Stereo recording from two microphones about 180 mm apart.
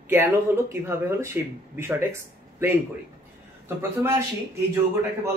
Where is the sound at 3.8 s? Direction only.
15° right (ahead or behind).